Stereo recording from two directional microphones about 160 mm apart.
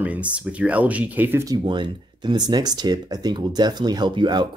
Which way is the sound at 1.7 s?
30° right (ahead or behind).